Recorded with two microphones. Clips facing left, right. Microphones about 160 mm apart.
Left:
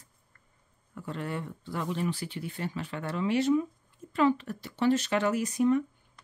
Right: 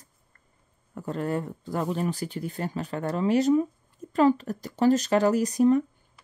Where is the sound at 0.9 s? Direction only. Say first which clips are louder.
Right 6 dB; 40° right (ahead or behind).